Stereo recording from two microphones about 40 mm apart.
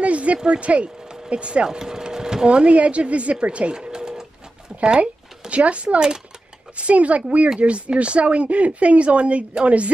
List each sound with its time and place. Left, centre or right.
0.0 s speech: right
1.7 s a sound: centre
2.4 s speech: right
3.7 s sewing machine: centre
4.7 s speech: right